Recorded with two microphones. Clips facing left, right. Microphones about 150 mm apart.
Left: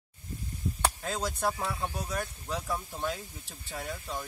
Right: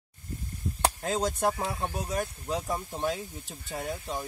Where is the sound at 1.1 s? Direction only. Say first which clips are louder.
Right 4 dB; 15° right (ahead or behind).